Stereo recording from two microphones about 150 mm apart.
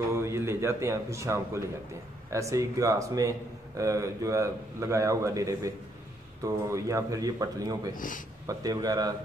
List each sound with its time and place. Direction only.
0.1 s speech: 20° right (ahead or behind)
7.9 s speech: 65° left (ahead or behind)
8.5 s speech: 25° right (ahead or behind)